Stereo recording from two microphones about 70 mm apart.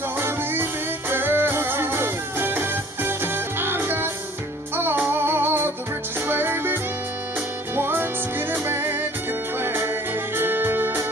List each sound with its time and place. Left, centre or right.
0.2 s music: right